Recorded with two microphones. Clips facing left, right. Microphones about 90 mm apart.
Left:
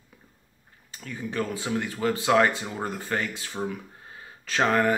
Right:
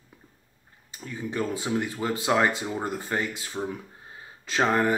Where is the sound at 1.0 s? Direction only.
20° right (ahead or behind).